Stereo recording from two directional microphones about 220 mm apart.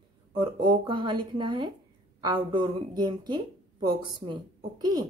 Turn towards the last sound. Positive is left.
turn(degrees=-20)  # may be behind; listen again after turning